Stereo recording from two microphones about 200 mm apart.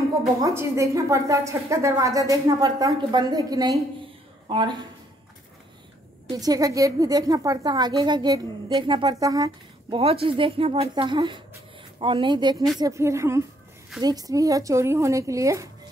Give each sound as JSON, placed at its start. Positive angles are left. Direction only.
{"t": 0.4, "sound": "a woman's voice", "side_deg": -15}
{"t": 6.2, "sound": "a woman's voice", "side_deg": -20}